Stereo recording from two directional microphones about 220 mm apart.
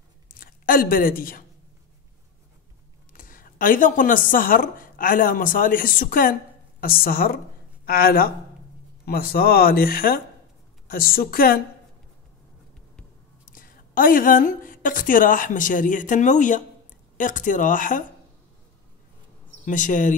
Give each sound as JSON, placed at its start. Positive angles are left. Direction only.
{"t": 0.4, "sound": "speech", "side_deg": 40}
{"t": 3.1, "sound": "speech", "side_deg": 40}
{"t": 13.5, "sound": "a woman's voice", "side_deg": 40}
{"t": 19.6, "sound": "speech", "side_deg": 35}